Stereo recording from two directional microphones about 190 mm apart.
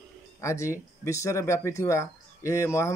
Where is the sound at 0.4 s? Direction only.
15° left (ahead or behind).